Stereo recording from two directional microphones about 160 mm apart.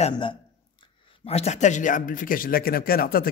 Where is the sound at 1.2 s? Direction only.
40° left (ahead or behind); by 3.3 s 65° left (ahead or behind).